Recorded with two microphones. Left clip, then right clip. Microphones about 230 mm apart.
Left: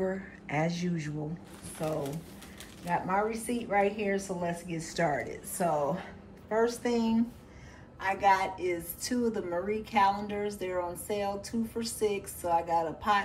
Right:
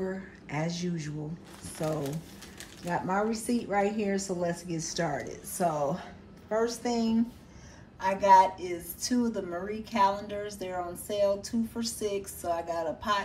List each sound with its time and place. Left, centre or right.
0.0 s speech: centre
2.9 s a woman's voice: centre